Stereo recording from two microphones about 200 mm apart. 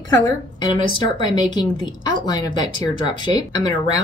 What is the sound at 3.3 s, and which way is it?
Speech, 20° left (ahead or behind).